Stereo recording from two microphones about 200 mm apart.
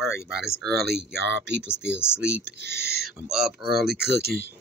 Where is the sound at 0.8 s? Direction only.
55° right (ahead or behind).